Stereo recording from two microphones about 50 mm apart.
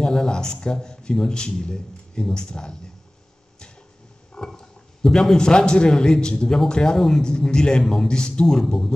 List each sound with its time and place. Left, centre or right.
0.0 s a man's voice: centre
4.4 s a man's voice: centre